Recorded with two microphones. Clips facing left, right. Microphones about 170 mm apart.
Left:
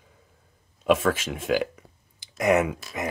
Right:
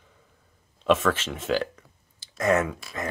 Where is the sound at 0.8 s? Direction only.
10° left (ahead or behind).